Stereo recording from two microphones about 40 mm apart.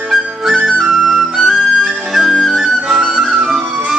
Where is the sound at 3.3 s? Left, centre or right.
Centre.